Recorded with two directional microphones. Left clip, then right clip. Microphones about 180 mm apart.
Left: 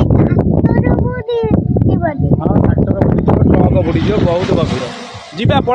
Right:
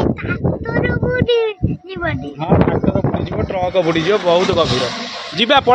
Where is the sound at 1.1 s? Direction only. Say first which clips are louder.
Right 2 dB; 15° left (ahead or behind).